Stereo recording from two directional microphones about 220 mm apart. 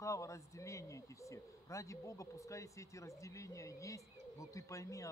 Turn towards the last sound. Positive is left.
turn(degrees=15)  # may be behind; listen again after turning